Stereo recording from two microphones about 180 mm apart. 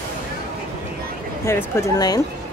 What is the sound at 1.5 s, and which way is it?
Speech, 15° left (ahead or behind).